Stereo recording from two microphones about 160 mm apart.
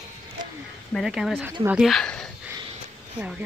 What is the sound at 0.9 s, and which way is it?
Speech, centre (ahead or behind).